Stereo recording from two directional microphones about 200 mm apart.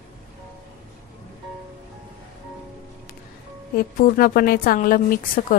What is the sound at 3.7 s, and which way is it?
A woman's voice, 50° left (ahead or behind).